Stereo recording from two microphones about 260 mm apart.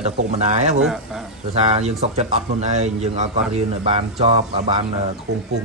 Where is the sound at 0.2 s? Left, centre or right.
Right.